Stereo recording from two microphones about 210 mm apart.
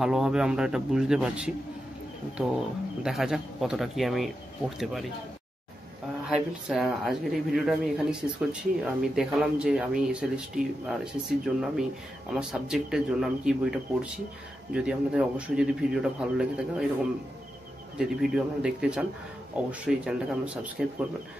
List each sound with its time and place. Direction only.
0.0 s speech: 5° right (ahead or behind)
3.0 s speech: centre (ahead or behind)
6.2 s speech: 5° right (ahead or behind)
17.9 s speech: 5° right (ahead or behind)